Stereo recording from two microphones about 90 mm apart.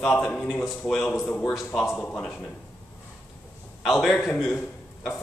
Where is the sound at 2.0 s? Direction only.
20° left (ahead or behind).